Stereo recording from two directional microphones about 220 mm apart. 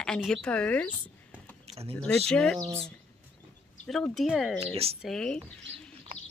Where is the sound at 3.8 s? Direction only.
Centre (ahead or behind).